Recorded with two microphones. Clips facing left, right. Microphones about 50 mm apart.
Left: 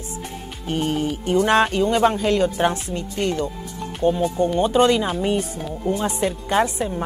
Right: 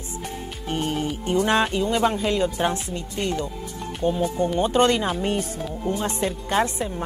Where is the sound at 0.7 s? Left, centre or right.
Centre.